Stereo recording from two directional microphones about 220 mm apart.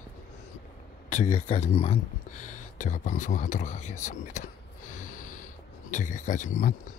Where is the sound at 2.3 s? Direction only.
90° left.